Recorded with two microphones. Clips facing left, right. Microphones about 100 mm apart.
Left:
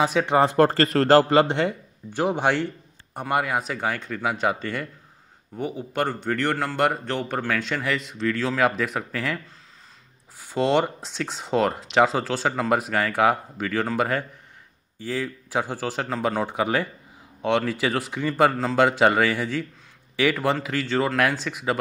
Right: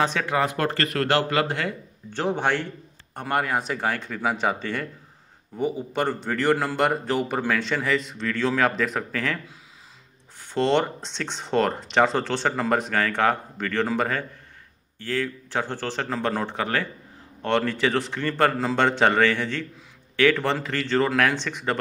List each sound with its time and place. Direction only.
0.0 s a man's voice: 10° left (ahead or behind)
0.3 s speech: 30° left (ahead or behind)
2.1 s a man's voice: 10° left (ahead or behind)
10.4 s a man's voice: 5° left (ahead or behind)